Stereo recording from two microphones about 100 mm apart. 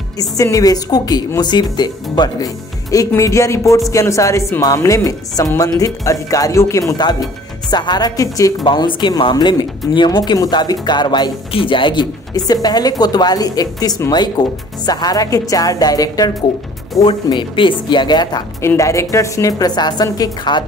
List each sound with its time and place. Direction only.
0.2 s speech: 35° left (ahead or behind)
7.0 s speech: 45° left (ahead or behind)
8.6 s speech: 55° left (ahead or behind)
17.0 s speech: 55° left (ahead or behind)
18.8 s speech: 30° left (ahead or behind)